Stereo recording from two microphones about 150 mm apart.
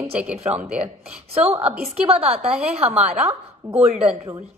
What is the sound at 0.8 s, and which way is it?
A woman's voice, 40° right (ahead or behind).